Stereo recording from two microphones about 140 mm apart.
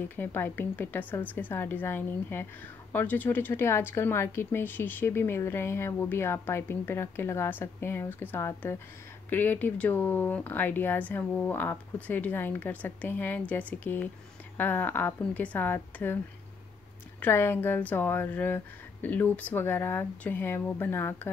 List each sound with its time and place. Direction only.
0.1 s speech: 15° left (ahead or behind)
17.2 s speech: 15° left (ahead or behind)